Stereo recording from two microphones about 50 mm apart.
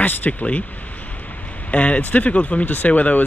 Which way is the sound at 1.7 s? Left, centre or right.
Left.